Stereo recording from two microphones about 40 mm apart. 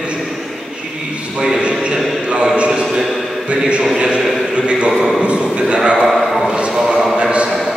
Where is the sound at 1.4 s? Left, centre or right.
Right.